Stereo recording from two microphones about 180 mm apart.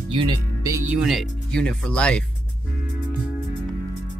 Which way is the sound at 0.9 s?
Centre (ahead or behind).